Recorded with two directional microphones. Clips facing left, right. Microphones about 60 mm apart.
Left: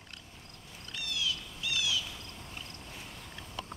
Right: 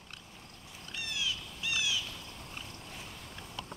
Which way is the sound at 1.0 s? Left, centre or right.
Right.